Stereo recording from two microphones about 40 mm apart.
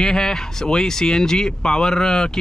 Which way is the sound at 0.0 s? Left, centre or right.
Centre.